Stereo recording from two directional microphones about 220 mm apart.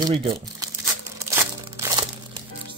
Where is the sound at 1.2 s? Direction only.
10° right (ahead or behind).